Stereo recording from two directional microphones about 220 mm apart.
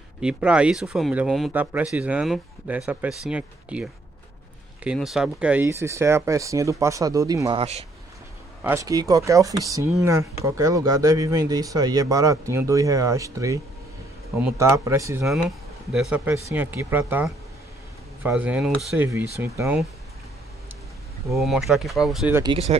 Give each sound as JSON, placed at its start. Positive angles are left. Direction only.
{"t": 0.2, "sound": "speech", "side_deg": -5}
{"t": 8.6, "sound": "speech", "side_deg": -15}
{"t": 21.3, "sound": "speech", "side_deg": 0}
{"t": 22.4, "sound": "speech", "side_deg": -25}